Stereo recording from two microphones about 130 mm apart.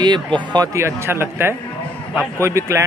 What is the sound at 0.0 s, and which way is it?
Speech, 35° right (ahead or behind).